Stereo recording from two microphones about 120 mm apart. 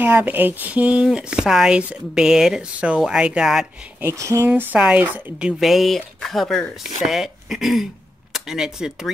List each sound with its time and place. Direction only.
0.0 s speech: 15° right (ahead or behind)
4.0 s speech: 25° right (ahead or behind)
4.6 s speech: 10° right (ahead or behind)
5.6 s speech: centre (ahead or behind)